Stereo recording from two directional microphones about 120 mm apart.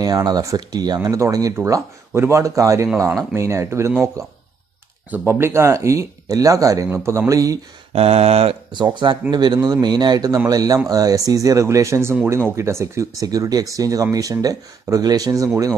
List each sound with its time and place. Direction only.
0.0 s speech: 30° right (ahead or behind)
5.1 s speech: 20° right (ahead or behind)
7.9 s speech: 55° right (ahead or behind)
8.7 s speech: 40° right (ahead or behind)